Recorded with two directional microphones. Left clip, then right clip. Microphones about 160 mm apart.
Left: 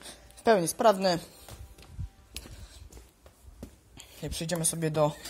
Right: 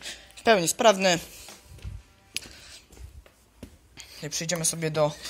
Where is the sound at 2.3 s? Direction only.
5° left (ahead or behind).